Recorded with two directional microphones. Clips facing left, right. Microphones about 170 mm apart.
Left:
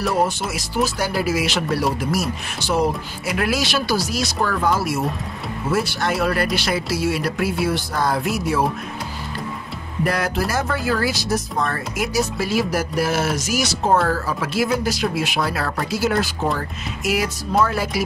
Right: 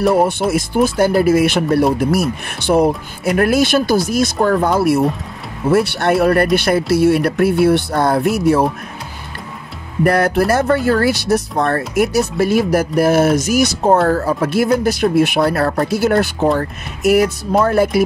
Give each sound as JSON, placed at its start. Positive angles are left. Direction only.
{"t": 0.0, "sound": "speech", "side_deg": -60}
{"t": 10.0, "sound": "speech", "side_deg": -60}